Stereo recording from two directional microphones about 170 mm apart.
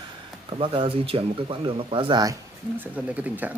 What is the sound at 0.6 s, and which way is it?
Speech, 30° right (ahead or behind).